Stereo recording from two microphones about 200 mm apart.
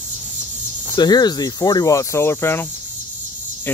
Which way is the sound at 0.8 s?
20° left (ahead or behind).